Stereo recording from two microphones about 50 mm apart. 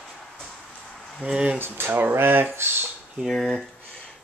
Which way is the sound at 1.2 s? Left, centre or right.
Right.